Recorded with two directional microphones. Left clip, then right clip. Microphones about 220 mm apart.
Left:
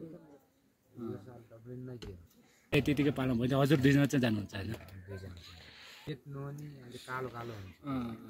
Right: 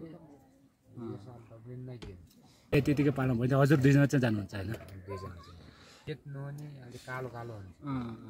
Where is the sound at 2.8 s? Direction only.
45° right (ahead or behind).